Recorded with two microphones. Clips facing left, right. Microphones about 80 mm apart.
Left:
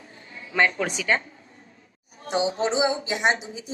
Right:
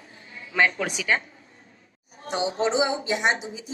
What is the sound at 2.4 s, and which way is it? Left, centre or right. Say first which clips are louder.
Speech: even; right.